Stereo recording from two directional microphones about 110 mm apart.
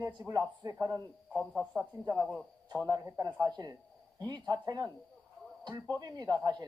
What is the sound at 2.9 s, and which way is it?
A man's voice, 30° right (ahead or behind).